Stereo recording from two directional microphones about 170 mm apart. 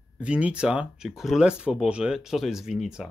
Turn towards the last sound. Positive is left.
turn(degrees=-5)  # may be behind; listen again after turning